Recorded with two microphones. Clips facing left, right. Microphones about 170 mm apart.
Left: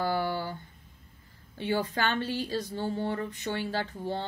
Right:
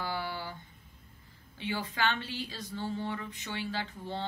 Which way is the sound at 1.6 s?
45° left (ahead or behind).